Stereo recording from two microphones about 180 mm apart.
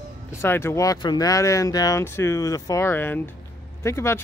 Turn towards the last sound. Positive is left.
turn(degrees=15)  # may be behind; listen again after turning